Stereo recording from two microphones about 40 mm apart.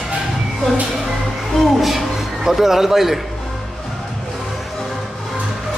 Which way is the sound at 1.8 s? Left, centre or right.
Centre.